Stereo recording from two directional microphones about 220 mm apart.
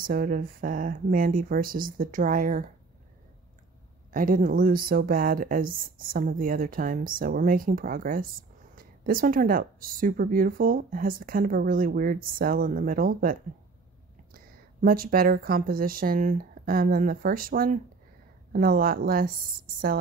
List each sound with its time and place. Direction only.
0.0 s speech: 40° right (ahead or behind)
4.1 s speech: 40° right (ahead or behind)